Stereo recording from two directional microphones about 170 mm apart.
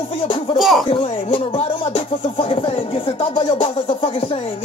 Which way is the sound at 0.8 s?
30° left (ahead or behind).